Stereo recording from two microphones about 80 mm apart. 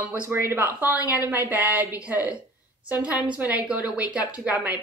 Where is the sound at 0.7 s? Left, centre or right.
Right.